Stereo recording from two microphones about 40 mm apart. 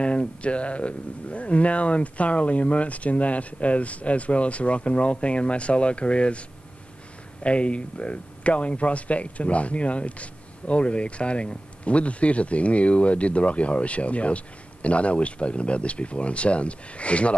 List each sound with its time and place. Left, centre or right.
0.0 s speech: left
7.4 s speech: left